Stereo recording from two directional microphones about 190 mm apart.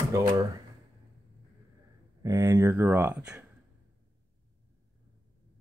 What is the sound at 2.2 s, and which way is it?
Speech, 15° right (ahead or behind).